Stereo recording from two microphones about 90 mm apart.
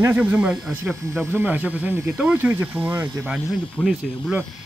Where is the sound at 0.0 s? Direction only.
20° right (ahead or behind).